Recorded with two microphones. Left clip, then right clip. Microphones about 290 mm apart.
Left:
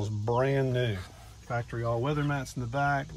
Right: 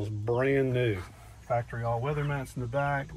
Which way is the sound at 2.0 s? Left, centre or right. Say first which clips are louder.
Left 2 dB; centre.